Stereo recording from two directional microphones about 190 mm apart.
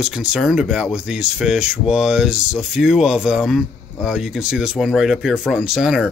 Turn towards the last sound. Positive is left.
turn(degrees=-5)  # may be behind; listen again after turning